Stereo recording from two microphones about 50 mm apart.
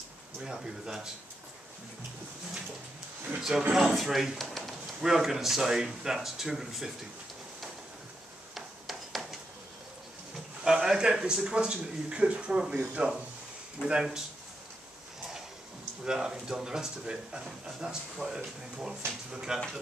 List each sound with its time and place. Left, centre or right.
0.4 s speech: centre
3.3 s speech: centre
8.5 s a sound: centre
10.6 s speech: centre
13.8 s speech: left
16.0 s speech: centre